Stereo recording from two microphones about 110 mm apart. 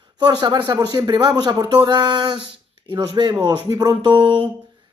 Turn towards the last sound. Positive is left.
turn(degrees=-45)  # may be behind; listen again after turning